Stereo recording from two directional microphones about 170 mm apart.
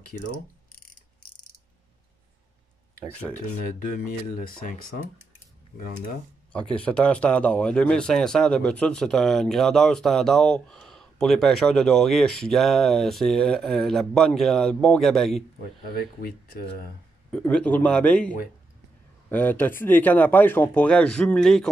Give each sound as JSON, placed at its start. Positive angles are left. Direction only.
{"t": 4.4, "sound": "speech", "side_deg": 55}
{"t": 5.8, "sound": "speech", "side_deg": 55}
{"t": 6.5, "sound": "speech", "side_deg": 5}
{"t": 17.3, "sound": "speech", "side_deg": 5}